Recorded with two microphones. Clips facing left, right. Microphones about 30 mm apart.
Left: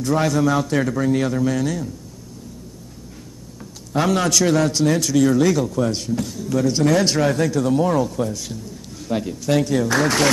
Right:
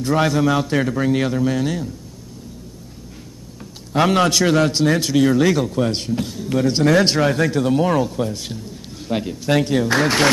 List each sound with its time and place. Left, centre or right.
0.0 s speech: right
3.9 s a man's voice: right